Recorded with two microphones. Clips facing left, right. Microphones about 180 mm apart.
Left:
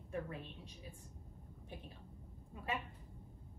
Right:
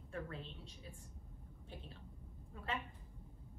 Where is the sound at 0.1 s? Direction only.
15° left (ahead or behind).